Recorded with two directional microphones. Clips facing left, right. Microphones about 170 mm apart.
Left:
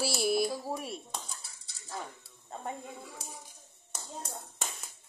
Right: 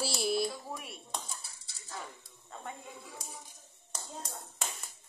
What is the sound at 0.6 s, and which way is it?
Speech, 35° left (ahead or behind).